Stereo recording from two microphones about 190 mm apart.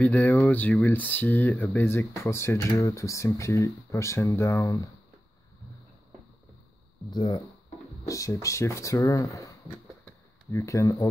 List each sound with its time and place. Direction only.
0.0 s speech: 10° left (ahead or behind)
7.1 s speech: 20° left (ahead or behind)
10.5 s speech: 15° left (ahead or behind)